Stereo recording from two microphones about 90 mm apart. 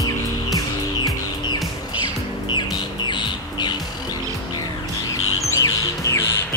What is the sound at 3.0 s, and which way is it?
Music, 55° left (ahead or behind).